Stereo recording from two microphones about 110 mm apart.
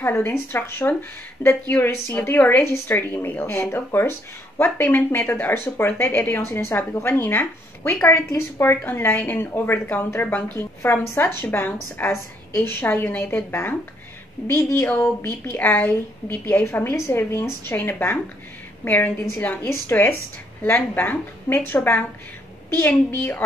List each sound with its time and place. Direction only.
0.0 s a woman's voice: 25° left (ahead or behind)